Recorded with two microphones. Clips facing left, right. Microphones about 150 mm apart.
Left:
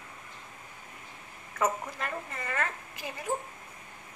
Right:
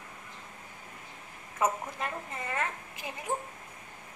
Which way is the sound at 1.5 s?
20° right (ahead or behind).